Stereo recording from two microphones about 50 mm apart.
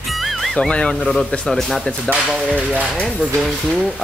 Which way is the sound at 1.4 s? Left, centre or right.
Centre.